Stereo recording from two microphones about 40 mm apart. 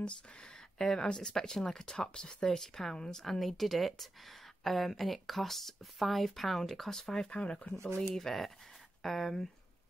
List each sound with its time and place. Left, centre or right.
0.0 s speech: centre
8.1 s speech: centre